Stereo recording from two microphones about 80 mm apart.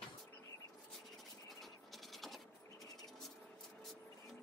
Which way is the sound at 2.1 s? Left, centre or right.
Centre.